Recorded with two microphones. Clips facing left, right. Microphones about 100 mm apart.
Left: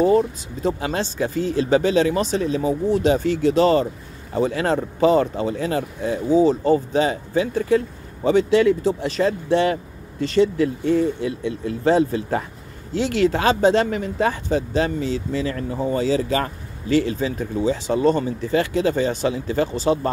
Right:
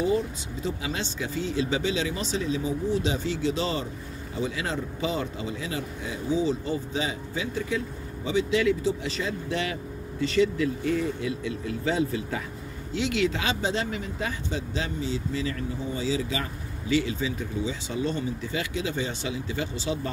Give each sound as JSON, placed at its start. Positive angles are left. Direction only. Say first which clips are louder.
{"t": 0.0, "sound": "speech", "louder": "left 9 dB", "side_deg": 50}
{"t": 10.3, "sound": "speech", "louder": "left 6 dB", "side_deg": 35}
{"t": 15.7, "sound": "speech", "louder": "left 11 dB", "side_deg": 60}
{"t": 17.8, "sound": "speech", "louder": "left 13 dB", "side_deg": 65}
{"t": 18.4, "sound": "speech", "louder": "left 10 dB", "side_deg": 45}